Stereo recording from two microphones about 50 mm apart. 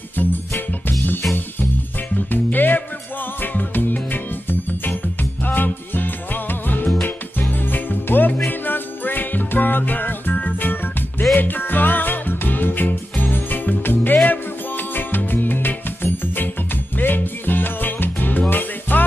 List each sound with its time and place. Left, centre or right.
2.1 s music: left